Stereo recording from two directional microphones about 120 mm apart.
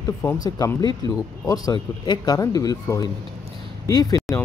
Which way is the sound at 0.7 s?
35° left (ahead or behind).